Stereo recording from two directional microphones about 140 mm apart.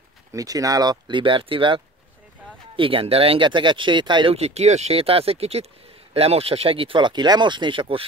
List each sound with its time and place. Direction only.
0.3 s speech: 25° right (ahead or behind)
4.4 s speech: 50° right (ahead or behind)